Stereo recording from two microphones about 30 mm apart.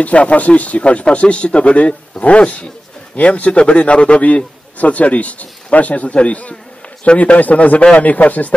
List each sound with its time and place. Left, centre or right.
0.0 s speech: left
7.2 s a man's voice: left